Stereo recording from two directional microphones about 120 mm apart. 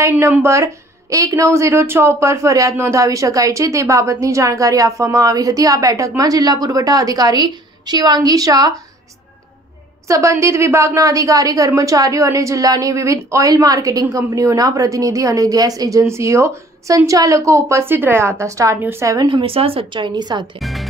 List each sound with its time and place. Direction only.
0.0 s a woman's voice: 20° right (ahead or behind)
10.0 s a woman's voice: 25° right (ahead or behind)
19.1 s a woman's voice: 40° right (ahead or behind)
20.5 s music: centre (ahead or behind)